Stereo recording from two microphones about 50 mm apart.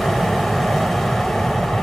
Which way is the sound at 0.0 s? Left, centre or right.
Centre.